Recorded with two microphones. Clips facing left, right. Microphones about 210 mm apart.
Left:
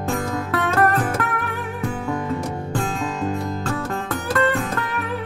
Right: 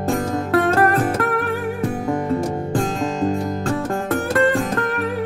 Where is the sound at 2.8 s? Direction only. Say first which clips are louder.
Right 4 dB; 40° right (ahead or behind).